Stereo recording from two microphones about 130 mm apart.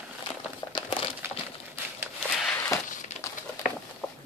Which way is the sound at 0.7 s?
40° left (ahead or behind).